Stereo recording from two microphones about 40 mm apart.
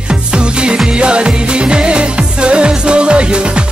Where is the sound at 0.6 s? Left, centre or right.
Right.